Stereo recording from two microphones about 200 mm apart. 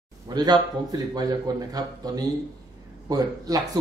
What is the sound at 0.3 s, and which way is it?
A man's voice, 20° right (ahead or behind).